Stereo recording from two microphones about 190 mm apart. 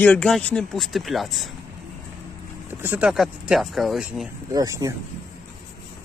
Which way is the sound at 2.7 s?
10° right (ahead or behind).